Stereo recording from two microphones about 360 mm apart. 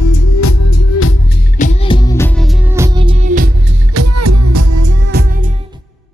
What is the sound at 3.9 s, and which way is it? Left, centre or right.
Music, right.